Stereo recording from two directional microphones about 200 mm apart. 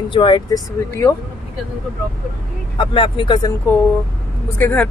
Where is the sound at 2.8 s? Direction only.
25° left (ahead or behind).